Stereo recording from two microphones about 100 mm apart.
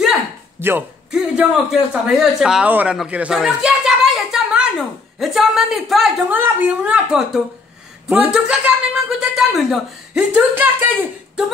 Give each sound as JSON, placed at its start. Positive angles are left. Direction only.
{"t": 0.6, "sound": "speech", "side_deg": -20}
{"t": 1.1, "sound": "a man's voice", "side_deg": -5}
{"t": 6.2, "sound": "a man's voice", "side_deg": -20}
{"t": 10.5, "sound": "speech", "side_deg": -20}